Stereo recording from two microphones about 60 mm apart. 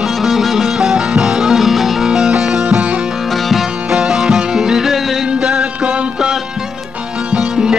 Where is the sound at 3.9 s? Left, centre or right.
Centre.